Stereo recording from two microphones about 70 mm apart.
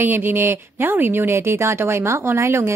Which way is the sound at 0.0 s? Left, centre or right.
Right.